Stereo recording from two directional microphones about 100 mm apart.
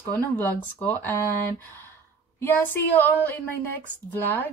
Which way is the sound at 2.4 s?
20° left (ahead or behind).